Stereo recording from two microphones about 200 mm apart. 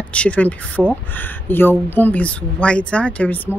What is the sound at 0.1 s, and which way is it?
Speech, 5° left (ahead or behind).